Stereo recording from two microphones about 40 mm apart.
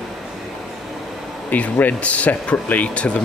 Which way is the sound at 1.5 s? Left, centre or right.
Left.